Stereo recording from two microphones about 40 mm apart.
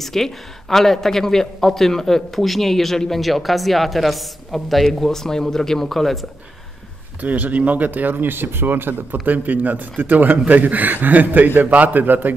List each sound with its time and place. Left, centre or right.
0.0 s a man's voice: centre
7.2 s speech: right